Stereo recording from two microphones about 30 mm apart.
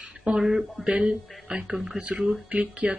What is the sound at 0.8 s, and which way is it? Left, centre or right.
Speech, right.